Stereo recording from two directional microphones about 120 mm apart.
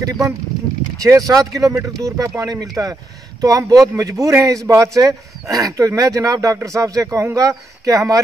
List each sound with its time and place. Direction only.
0.0 s a man's voice: 30° right (ahead or behind)